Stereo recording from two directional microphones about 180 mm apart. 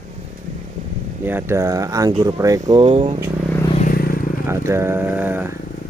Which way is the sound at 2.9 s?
35° right (ahead or behind).